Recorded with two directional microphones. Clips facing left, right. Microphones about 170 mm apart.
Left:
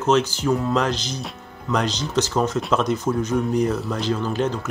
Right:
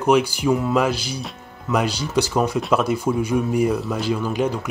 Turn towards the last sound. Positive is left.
turn(degrees=-10)  # may be behind; listen again after turning